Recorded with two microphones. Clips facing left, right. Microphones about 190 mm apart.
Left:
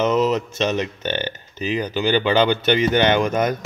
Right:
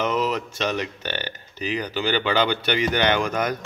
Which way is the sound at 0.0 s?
20° left (ahead or behind).